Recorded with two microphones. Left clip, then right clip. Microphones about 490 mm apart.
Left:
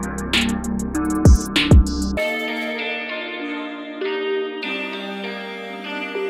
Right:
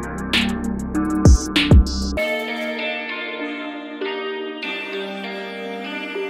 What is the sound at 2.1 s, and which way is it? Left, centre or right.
Music, left.